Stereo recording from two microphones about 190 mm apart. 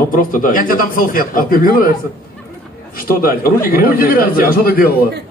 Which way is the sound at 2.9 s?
50° left (ahead or behind).